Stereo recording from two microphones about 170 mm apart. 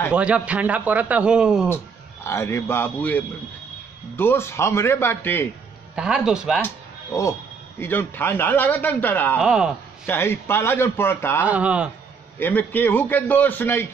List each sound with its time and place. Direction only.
0.1 s a man's voice: 10° right (ahead or behind)
2.2 s a man's voice: 15° left (ahead or behind)
5.9 s speech: 5° right (ahead or behind)
7.8 s a man's voice: 10° left (ahead or behind)
9.4 s speech: 5° right (ahead or behind)
10.0 s a man's voice: 15° left (ahead or behind)
11.4 s a man's voice: 10° right (ahead or behind)
12.4 s a man's voice: 10° left (ahead or behind)